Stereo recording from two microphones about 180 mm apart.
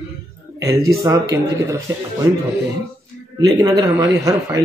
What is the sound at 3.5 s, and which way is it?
Speech, 20° right (ahead or behind).